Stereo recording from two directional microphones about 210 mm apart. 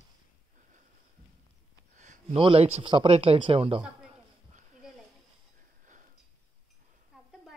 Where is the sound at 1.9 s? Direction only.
35° right (ahead or behind).